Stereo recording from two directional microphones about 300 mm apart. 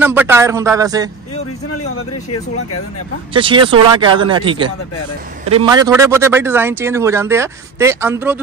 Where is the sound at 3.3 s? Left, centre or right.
Centre.